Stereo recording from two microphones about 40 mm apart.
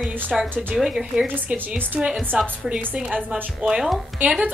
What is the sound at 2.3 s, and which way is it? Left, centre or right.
Speech, right.